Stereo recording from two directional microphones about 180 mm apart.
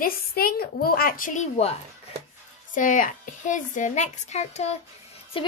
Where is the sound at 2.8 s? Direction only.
45° left (ahead or behind).